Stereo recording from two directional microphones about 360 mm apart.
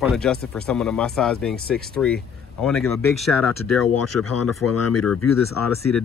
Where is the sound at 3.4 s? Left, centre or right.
Left.